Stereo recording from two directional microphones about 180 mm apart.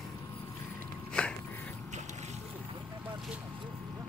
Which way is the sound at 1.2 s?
5° left (ahead or behind).